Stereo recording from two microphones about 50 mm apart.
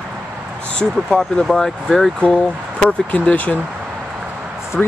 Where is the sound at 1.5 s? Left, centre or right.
Centre.